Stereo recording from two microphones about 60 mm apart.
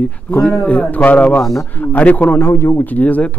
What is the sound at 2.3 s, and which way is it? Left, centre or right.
Speech, left.